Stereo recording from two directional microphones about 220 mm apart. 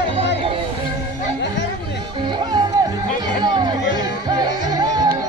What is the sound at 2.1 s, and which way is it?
Music, 20° right (ahead or behind).